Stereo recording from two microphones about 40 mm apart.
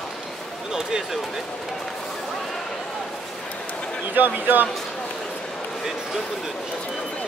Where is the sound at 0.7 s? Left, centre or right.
Centre.